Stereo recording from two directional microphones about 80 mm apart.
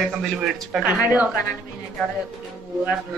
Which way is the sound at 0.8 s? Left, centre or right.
Right.